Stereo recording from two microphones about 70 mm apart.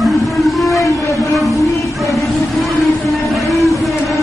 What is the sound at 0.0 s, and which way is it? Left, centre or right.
Whale vocalization, centre.